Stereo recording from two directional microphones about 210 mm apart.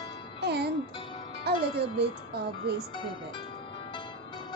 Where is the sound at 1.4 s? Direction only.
50° right (ahead or behind).